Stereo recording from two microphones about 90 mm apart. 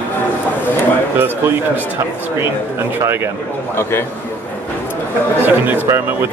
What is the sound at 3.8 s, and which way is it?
Speech, 25° left (ahead or behind).